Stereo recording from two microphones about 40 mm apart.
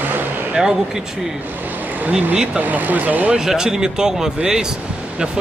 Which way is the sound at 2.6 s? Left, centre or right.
Right.